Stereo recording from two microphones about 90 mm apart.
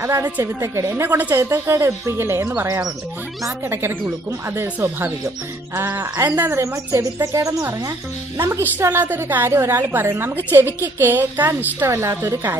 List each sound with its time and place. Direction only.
0.4 s speech: 30° right (ahead or behind)
1.0 s a woman's voice: 20° right (ahead or behind); by 7.6 s 40° right (ahead or behind)
8.4 s a woman's voice: 25° right (ahead or behind)